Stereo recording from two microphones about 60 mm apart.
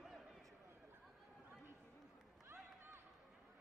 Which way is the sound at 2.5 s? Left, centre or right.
Right.